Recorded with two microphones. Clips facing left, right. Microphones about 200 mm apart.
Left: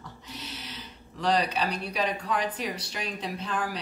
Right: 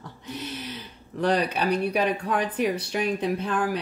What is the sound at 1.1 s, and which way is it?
Speech, 55° right (ahead or behind).